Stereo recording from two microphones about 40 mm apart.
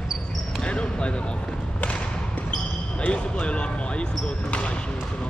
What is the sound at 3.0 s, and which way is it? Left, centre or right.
Speech, left.